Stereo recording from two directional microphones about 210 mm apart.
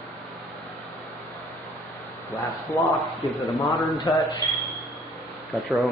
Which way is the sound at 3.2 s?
15° left (ahead or behind).